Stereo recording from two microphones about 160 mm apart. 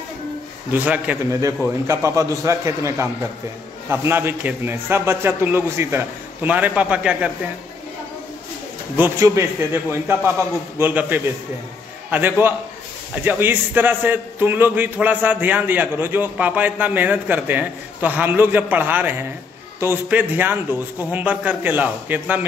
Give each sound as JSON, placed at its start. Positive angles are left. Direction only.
{"t": 0.7, "sound": "a man's voice", "side_deg": -10}
{"t": 8.9, "sound": "a man's voice", "side_deg": -15}